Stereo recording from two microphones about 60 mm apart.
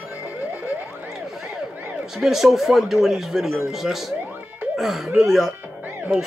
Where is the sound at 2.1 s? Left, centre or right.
Centre.